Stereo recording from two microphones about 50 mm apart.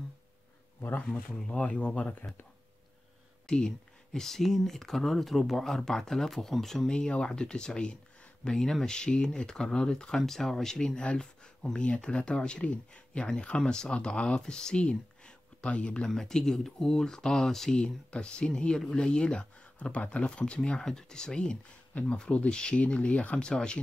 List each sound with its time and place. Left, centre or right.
1.0 s speech: centre
1.6 s speech: left
3.4 s speech: centre
6.9 s speech: centre
8.5 s speech: centre
16.1 s speech: centre; by 23.5 s left
23.5 s speech: centre